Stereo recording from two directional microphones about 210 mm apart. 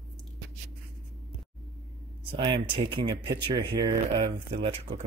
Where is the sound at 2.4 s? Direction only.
20° right (ahead or behind).